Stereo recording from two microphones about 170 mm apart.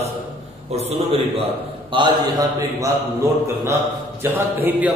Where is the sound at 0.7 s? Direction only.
35° right (ahead or behind).